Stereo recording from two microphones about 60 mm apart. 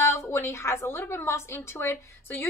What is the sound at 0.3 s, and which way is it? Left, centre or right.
A woman's voice, left.